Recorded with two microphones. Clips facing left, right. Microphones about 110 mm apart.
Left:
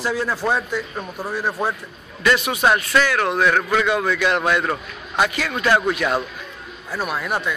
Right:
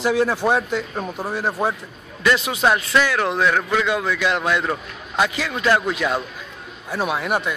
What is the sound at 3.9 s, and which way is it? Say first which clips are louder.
Speech: left 2 dB; 10° right (ahead or behind).